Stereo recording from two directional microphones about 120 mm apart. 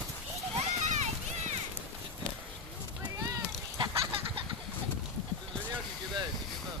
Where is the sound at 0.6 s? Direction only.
75° right (ahead or behind).